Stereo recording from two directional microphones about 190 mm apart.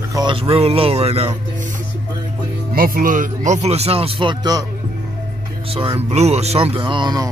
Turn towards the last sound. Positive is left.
turn(degrees=-25)  # may be behind; listen again after turning